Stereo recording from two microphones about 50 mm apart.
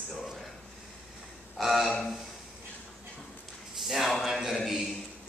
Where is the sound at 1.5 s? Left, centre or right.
Centre.